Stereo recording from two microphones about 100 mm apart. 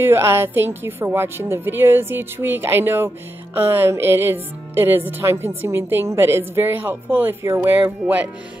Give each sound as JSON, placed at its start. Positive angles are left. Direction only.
{"t": 0.0, "sound": "a woman's voice", "side_deg": -25}